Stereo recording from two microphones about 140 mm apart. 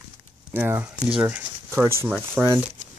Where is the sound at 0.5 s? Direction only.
15° right (ahead or behind).